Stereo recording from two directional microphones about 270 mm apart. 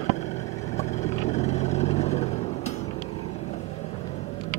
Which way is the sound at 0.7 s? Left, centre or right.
Left.